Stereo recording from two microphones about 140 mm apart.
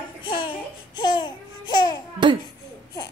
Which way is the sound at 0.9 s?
30° left (ahead or behind).